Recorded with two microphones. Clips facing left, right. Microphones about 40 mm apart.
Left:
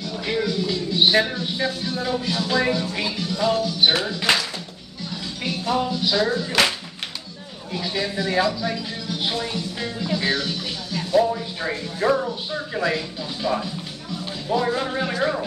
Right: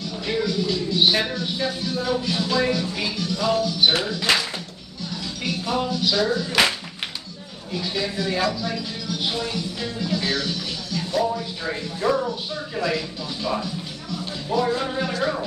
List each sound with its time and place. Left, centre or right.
0.2 s speech: centre
2.4 s music: centre
5.9 s speech: left
7.7 s music: centre
11.1 s speech: left
12.2 s music: centre